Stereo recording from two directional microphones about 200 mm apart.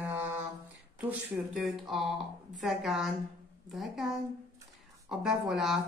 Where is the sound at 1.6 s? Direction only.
Centre (ahead or behind).